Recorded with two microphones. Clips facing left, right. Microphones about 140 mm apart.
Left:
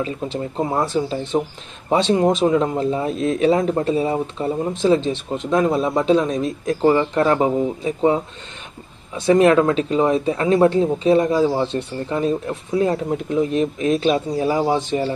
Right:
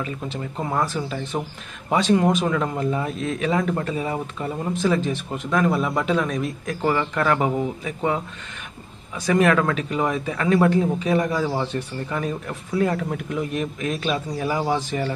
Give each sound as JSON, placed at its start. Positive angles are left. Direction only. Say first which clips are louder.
{"t": 0.4, "sound": "speech", "louder": "left 3 dB", "side_deg": 25}